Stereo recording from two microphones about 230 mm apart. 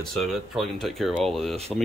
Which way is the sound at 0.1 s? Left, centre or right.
Centre.